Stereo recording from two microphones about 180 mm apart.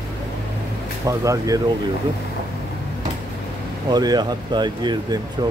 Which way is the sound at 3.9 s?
20° right (ahead or behind).